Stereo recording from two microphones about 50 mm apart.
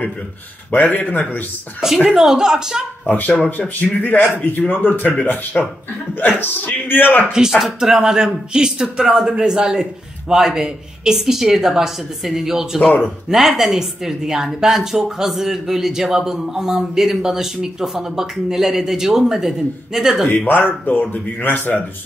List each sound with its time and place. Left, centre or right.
0.8 s speech: left
2.0 s a woman's voice: centre
3.1 s speech: left
7.3 s a woman's voice: centre
12.8 s speech: left
13.3 s a woman's voice: centre
20.4 s speech: left